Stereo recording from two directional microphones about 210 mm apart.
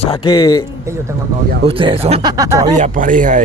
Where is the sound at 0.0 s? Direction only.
20° left (ahead or behind).